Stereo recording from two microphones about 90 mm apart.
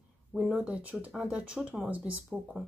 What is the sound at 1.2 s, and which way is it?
Speech, 15° right (ahead or behind).